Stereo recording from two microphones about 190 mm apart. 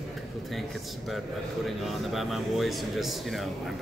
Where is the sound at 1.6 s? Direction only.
Centre (ahead or behind).